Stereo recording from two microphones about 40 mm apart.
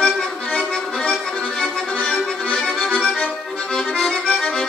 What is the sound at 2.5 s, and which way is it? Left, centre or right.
Accordion, centre.